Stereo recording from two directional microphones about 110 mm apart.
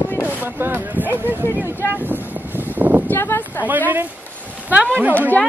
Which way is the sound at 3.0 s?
20° left (ahead or behind).